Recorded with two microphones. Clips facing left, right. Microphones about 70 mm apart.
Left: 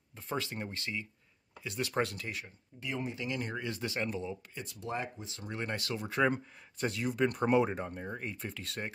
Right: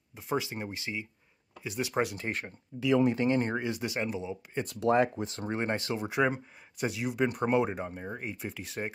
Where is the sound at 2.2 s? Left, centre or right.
Right.